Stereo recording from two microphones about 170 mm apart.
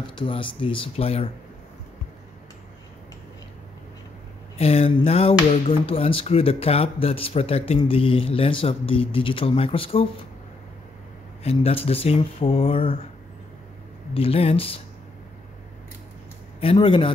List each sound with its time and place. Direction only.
0.0 s speech: 30° left (ahead or behind)
4.6 s speech: 40° left (ahead or behind)
11.4 s speech: 35° left (ahead or behind)
14.1 s speech: 35° left (ahead or behind)
16.5 s a man's voice: 30° left (ahead or behind)